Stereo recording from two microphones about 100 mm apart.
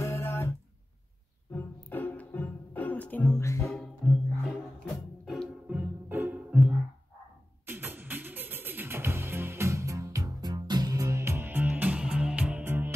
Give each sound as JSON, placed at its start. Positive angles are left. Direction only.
{"t": 0.0, "sound": "music", "side_deg": 25}
{"t": 3.3, "sound": "music", "side_deg": 30}
{"t": 3.6, "sound": "music", "side_deg": 5}
{"t": 5.7, "sound": "music", "side_deg": -20}